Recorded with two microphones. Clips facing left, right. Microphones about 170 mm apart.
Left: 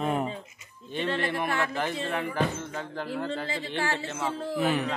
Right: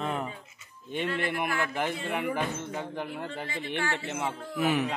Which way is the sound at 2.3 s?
15° right (ahead or behind).